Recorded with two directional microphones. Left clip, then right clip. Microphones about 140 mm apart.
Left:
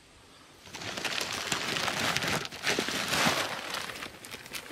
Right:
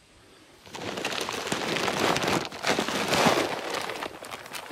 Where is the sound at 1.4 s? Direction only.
65° left (ahead or behind).